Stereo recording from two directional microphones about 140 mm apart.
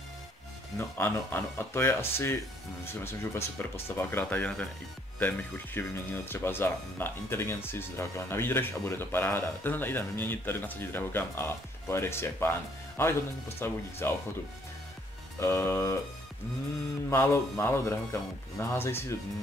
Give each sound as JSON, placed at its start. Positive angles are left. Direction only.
{"t": 0.7, "sound": "speech", "side_deg": 15}
{"t": 5.8, "sound": "speech", "side_deg": 15}
{"t": 15.3, "sound": "speech", "side_deg": 20}
{"t": 17.1, "sound": "speech", "side_deg": 20}